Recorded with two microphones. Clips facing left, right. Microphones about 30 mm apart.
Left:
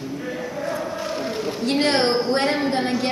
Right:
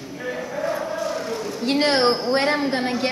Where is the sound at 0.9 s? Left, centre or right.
Left.